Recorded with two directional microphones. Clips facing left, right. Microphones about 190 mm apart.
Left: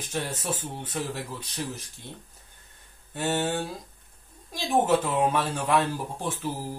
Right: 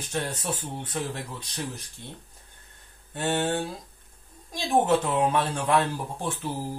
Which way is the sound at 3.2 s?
5° left (ahead or behind).